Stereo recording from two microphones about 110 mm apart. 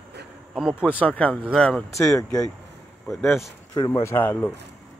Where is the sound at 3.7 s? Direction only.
40° left (ahead or behind).